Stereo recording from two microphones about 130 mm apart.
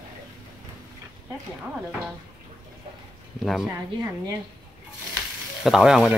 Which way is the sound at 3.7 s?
20° right (ahead or behind).